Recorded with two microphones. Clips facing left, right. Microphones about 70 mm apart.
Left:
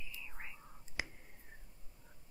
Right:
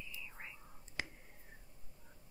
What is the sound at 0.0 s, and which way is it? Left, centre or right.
Whispering, centre.